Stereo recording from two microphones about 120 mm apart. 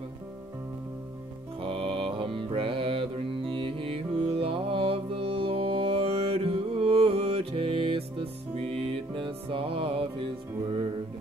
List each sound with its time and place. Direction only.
1.6 s music: 45° right (ahead or behind)